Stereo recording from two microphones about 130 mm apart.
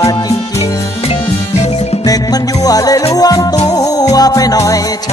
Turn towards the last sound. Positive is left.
turn(degrees=25)  # may be behind; listen again after turning